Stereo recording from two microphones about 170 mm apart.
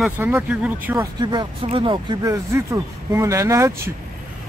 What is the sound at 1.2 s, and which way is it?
Speech, 25° right (ahead or behind).